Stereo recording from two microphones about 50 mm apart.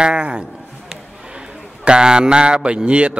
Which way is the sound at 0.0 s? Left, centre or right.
Centre.